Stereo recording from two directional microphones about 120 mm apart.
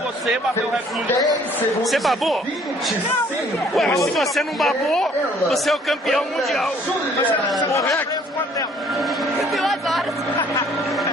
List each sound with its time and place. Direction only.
1.8 s speech: centre (ahead or behind)
3.7 s speech: centre (ahead or behind)
7.6 s a man's voice: 25° left (ahead or behind)
9.4 s a sound: centre (ahead or behind)